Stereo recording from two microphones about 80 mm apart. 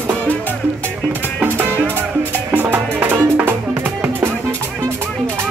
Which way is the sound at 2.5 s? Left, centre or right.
Right.